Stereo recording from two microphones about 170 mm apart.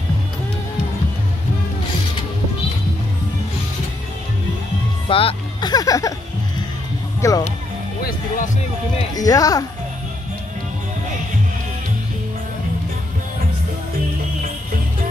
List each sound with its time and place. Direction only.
5.0 s music: 30° left (ahead or behind)
7.2 s music: 20° left (ahead or behind)
9.1 s speech: 20° left (ahead or behind)